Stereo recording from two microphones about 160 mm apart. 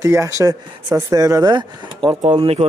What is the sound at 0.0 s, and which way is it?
Speech, 20° right (ahead or behind).